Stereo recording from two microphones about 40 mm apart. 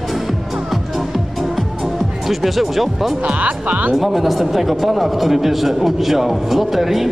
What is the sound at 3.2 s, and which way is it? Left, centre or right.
Speech, right.